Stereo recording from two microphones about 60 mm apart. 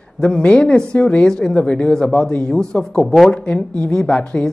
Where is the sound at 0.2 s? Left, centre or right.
Centre.